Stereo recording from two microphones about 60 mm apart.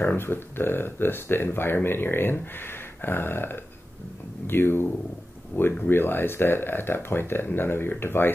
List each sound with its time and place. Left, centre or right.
0.0 s speech: left